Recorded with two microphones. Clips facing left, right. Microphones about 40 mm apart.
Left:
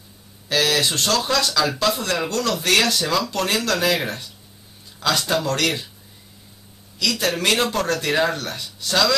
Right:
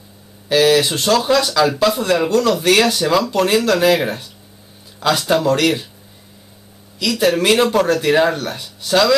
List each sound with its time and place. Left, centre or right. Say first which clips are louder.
0.5 s speech: right 7 dB; centre
7.0 s speech: right 6 dB; centre